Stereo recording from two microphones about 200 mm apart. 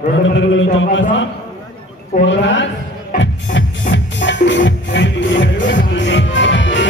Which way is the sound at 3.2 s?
65° left (ahead or behind).